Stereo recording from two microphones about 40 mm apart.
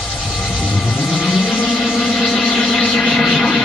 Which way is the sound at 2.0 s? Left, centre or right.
Centre.